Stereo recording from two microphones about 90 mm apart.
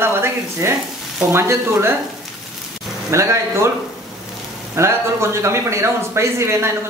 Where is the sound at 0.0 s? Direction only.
25° right (ahead or behind).